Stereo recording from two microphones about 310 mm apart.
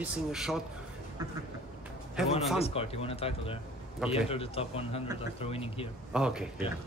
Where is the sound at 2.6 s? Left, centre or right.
Centre.